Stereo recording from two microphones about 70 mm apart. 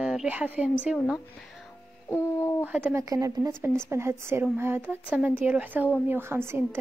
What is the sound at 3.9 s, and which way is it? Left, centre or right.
A woman's voice, right.